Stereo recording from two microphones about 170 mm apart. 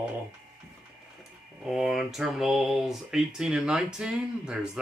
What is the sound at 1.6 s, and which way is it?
Speech, centre (ahead or behind).